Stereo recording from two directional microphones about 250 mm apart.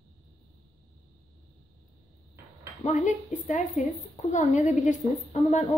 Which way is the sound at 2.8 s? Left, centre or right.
Left.